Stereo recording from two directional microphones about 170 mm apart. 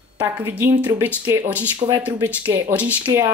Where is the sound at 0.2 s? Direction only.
10° right (ahead or behind).